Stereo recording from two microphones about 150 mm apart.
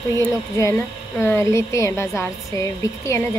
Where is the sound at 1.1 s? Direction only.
15° left (ahead or behind).